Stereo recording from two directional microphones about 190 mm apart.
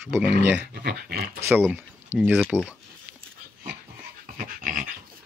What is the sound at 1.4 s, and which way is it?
Speech, 10° right (ahead or behind).